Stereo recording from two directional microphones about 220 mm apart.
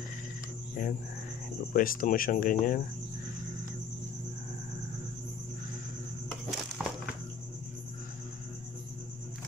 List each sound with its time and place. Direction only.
0.8 s speech: 35° left (ahead or behind)
6.8 s walk: centre (ahead or behind)